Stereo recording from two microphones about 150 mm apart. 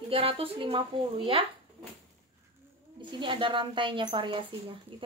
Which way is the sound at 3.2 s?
35° right (ahead or behind).